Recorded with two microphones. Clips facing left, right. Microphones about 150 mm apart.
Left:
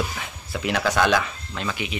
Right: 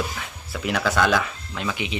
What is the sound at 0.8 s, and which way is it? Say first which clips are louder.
Speech: even; 10° left (ahead or behind).